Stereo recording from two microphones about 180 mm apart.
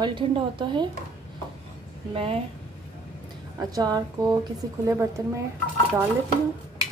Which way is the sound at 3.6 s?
20° right (ahead or behind).